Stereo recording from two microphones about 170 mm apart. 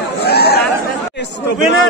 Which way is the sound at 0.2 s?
70° left (ahead or behind).